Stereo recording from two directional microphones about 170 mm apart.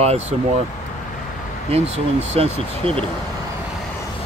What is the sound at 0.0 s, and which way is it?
Speech, 40° right (ahead or behind).